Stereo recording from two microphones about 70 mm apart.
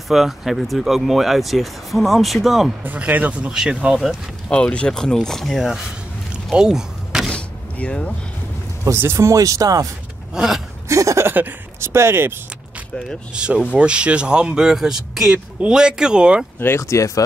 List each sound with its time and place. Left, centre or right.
0.1 s speech: centre
2.8 s speech: right; by 4.2 s centre
4.5 s speech: centre
6.5 s a sound: centre
7.2 s power windows: centre
8.9 s speech: right
10.3 s speech: centre
10.9 s chuckle: right
11.2 s speech: right
13.3 s speech: centre
16.5 s speech: left
16.8 s speech: left